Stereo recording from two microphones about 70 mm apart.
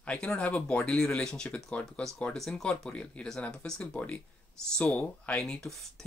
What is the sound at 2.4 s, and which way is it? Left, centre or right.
Speech, centre.